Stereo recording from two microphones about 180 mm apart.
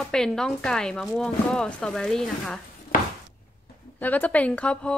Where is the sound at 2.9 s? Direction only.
50° left (ahead or behind).